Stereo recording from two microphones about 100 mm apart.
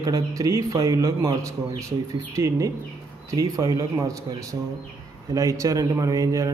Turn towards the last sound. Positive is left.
turn(degrees=-35)  # may be behind; listen again after turning